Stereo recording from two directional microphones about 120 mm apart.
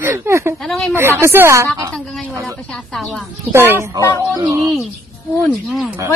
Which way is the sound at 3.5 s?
20° right (ahead or behind).